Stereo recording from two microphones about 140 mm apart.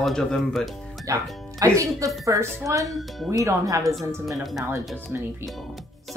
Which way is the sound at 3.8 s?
Centre (ahead or behind).